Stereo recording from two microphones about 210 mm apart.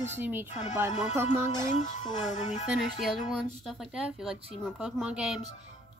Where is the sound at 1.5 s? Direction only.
20° left (ahead or behind).